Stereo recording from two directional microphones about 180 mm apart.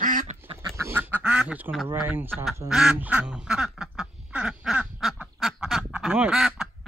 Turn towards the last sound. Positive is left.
turn(degrees=-5)  # may be behind; listen again after turning